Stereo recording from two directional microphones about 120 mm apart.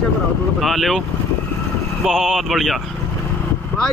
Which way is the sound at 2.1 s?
Centre (ahead or behind).